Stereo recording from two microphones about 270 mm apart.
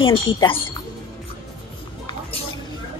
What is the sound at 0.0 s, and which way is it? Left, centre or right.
Speech, centre.